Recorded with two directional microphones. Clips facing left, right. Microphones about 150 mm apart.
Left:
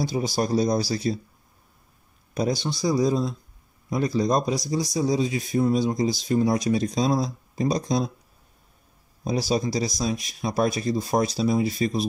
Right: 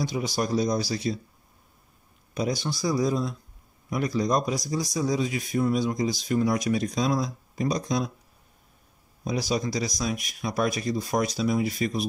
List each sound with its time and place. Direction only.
0.0 s speech: 35° left (ahead or behind)
2.3 s speech: 30° left (ahead or behind)
9.2 s speech: 35° left (ahead or behind)